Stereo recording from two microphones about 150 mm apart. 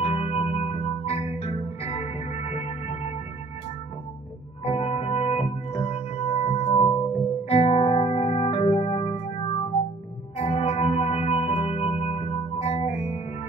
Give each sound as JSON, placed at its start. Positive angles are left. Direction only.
{"t": 0.0, "sound": "music", "side_deg": 40}
{"t": 4.6, "sound": "music", "side_deg": 40}